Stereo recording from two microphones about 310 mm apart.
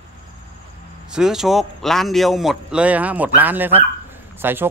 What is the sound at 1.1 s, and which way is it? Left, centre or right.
A man's voice, centre.